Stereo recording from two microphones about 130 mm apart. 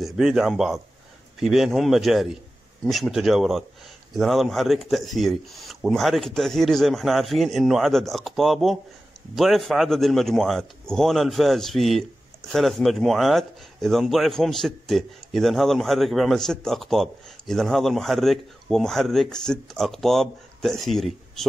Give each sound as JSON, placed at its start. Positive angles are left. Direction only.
{"t": 0.0, "sound": "speech", "side_deg": 0}